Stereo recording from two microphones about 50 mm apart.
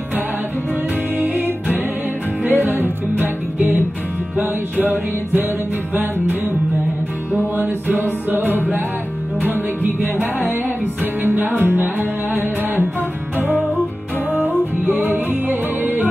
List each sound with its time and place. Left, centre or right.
1.2 s music: right
7.5 s music: right
11.2 s music: right
13.4 s music: right
14.3 s music: left
14.9 s music: right